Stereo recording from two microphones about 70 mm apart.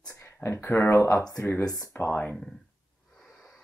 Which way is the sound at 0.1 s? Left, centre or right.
Left.